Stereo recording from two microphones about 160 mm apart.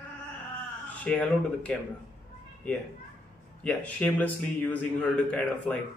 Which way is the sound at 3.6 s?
10° left (ahead or behind).